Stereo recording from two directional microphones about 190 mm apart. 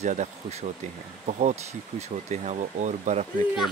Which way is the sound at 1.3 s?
40° right (ahead or behind).